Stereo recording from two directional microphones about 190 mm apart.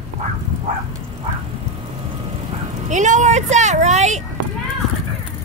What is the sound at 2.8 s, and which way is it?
Speech, 40° right (ahead or behind).